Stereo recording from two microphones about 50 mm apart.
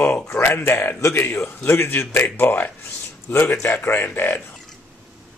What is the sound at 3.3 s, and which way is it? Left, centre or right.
A man's voice, left.